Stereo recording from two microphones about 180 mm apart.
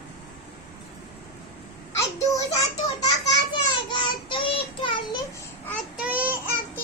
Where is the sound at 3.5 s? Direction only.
25° left (ahead or behind).